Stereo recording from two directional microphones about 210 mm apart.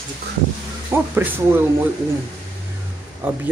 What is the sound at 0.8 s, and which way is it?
Speech, 10° right (ahead or behind).